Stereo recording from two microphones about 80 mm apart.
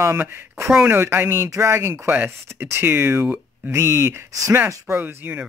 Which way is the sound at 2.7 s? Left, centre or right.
Right.